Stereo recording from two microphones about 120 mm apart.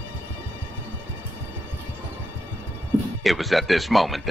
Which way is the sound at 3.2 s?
Centre (ahead or behind).